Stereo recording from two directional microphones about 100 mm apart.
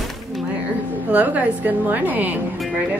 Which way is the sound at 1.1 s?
15° right (ahead or behind).